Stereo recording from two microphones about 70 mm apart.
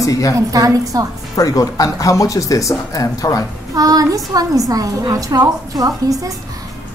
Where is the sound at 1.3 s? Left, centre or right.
Left.